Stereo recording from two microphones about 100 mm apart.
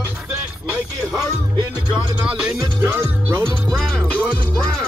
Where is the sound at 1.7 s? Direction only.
15° right (ahead or behind).